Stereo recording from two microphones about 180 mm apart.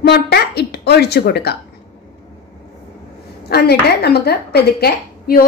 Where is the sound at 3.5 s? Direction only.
60° left (ahead or behind).